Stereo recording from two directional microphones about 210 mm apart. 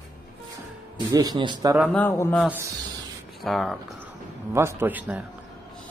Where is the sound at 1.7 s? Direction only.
5° left (ahead or behind).